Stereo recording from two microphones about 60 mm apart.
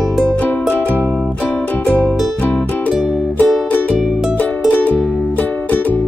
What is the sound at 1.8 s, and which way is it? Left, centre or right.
Music, left.